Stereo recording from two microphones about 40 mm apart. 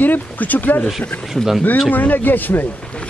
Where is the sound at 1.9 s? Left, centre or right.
Left.